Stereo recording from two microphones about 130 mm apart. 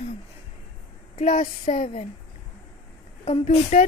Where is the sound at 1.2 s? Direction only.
60° left (ahead or behind).